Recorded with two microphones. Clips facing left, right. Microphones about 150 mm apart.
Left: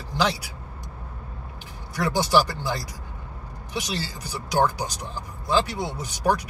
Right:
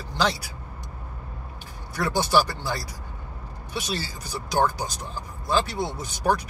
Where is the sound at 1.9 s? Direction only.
15° left (ahead or behind).